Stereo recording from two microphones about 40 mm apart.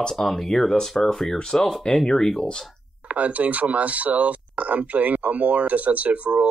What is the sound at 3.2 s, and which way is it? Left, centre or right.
Speech, right.